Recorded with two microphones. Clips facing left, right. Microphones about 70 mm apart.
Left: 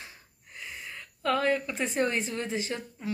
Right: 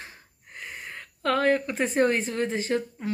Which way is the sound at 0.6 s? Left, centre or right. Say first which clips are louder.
Right 3 dB; right.